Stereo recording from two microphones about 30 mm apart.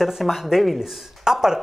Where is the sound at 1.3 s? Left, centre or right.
Right.